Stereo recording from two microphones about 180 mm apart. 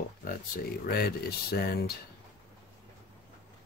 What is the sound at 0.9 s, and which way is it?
Speech, 60° left (ahead or behind).